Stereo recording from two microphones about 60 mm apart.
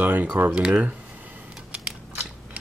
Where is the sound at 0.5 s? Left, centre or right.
Centre.